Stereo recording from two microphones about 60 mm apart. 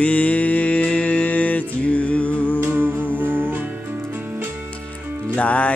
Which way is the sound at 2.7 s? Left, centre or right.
Right.